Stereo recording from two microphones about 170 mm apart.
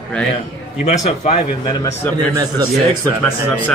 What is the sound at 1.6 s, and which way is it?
Speech, 25° left (ahead or behind).